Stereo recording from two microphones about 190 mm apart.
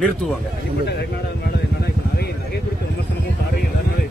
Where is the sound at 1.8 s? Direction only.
55° left (ahead or behind).